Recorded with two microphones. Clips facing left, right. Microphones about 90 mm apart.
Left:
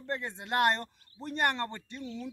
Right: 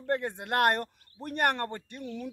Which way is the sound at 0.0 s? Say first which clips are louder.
Right 6 dB; 55° right (ahead or behind).